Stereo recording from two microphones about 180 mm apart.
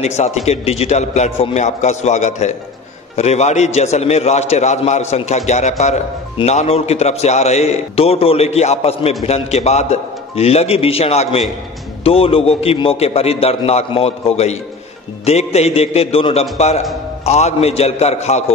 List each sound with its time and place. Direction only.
0.0 s a man's voice: 40° left (ahead or behind)